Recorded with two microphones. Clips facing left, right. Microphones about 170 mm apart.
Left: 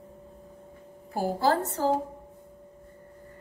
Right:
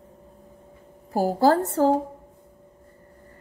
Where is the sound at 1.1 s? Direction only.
45° right (ahead or behind).